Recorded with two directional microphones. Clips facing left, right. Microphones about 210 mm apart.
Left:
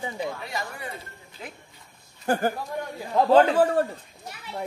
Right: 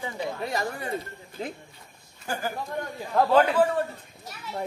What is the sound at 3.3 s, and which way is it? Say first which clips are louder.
Speech: left 4 dB; 30° left (ahead or behind).